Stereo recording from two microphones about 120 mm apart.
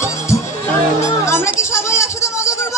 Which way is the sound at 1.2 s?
20° left (ahead or behind).